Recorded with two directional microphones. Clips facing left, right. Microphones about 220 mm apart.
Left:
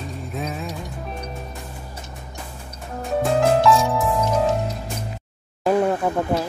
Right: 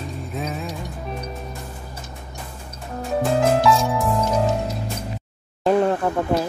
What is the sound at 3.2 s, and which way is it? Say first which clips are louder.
Music: left 1 dB; centre (ahead or behind).